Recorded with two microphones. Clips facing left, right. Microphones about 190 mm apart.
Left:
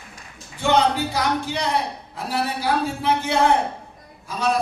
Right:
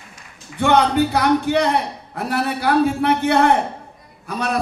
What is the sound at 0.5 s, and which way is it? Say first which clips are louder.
A man's voice: right 4 dB; 60° right (ahead or behind).